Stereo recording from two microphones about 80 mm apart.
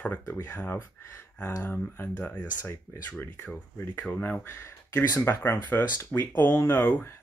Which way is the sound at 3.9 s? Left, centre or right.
Centre.